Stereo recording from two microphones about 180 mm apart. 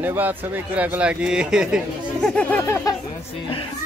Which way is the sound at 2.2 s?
10° left (ahead or behind).